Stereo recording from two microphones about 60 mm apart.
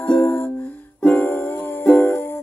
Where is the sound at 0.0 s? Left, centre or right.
Left.